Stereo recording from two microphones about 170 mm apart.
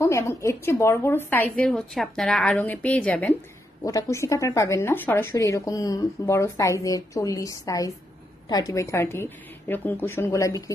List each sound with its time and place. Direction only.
0.0 s a woman's voice: 15° left (ahead or behind)
3.8 s a woman's voice: 20° left (ahead or behind)